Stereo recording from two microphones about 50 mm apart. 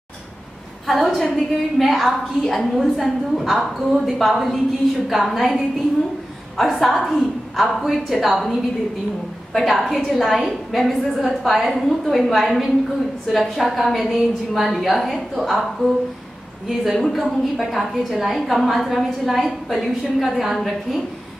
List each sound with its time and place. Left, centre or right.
0.8 s a woman's voice: centre
16.9 s a woman's voice: centre